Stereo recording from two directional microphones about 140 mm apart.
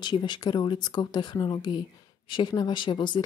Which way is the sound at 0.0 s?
30° left (ahead or behind).